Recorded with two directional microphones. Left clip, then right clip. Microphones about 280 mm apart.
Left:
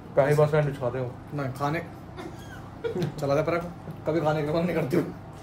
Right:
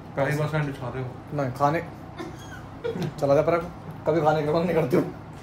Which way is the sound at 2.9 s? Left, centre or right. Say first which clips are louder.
Right 5 dB; centre.